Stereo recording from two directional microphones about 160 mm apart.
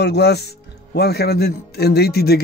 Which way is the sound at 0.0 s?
90° left.